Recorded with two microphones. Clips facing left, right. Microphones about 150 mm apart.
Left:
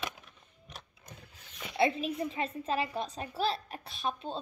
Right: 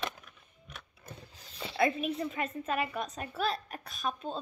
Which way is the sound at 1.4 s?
30° right (ahead or behind).